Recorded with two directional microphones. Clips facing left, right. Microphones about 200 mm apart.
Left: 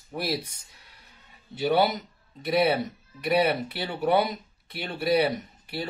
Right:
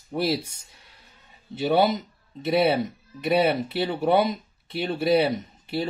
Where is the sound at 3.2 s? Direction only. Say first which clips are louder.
Right 2 dB; 25° right (ahead or behind).